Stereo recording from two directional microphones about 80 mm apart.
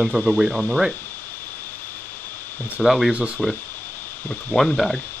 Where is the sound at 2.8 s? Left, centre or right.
Centre.